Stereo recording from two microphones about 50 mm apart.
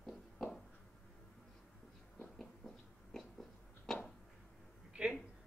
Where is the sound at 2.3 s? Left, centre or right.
Centre.